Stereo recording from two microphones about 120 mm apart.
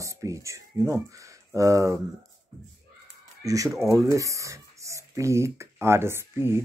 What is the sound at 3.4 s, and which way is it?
Speech, 30° right (ahead or behind).